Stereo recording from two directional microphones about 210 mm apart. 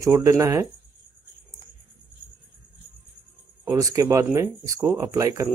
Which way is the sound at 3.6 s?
15° right (ahead or behind).